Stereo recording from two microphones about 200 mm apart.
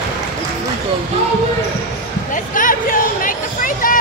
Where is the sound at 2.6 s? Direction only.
40° left (ahead or behind).